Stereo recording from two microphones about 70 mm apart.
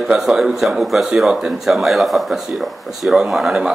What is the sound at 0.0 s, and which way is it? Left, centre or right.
Speech, centre.